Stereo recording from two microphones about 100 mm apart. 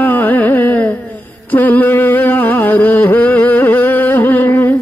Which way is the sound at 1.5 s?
20° left (ahead or behind).